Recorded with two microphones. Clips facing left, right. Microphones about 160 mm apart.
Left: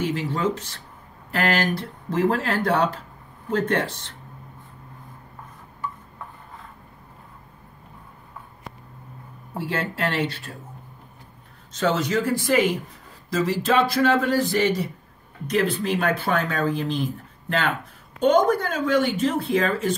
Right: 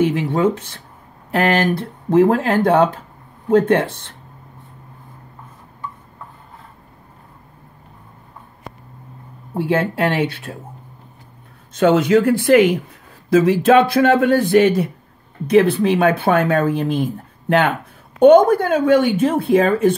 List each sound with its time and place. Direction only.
0.0 s speech: 60° right (ahead or behind)
9.6 s speech: 55° right (ahead or behind)
11.7 s speech: 60° right (ahead or behind)